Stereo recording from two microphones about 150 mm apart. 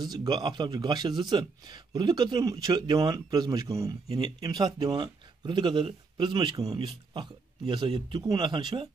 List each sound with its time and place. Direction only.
0.0 s a man's voice: 25° right (ahead or behind)